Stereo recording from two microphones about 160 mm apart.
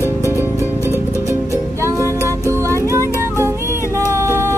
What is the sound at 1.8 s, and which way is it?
Music, 20° right (ahead or behind).